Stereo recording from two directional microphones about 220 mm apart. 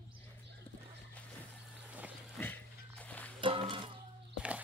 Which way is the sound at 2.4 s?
5° left (ahead or behind).